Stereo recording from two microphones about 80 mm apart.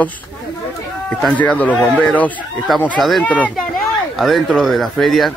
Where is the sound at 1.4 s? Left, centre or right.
Centre.